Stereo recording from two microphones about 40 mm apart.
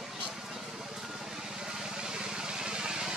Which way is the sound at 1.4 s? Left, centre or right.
Centre.